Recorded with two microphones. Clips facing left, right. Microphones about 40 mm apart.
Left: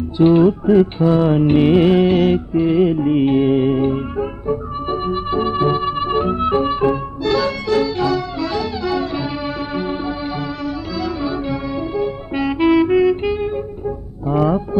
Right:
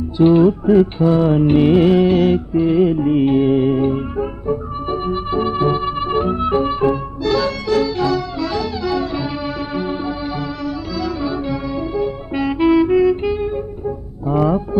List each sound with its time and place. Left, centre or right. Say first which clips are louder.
0.2 s music: even; centre
11.9 s music: even; centre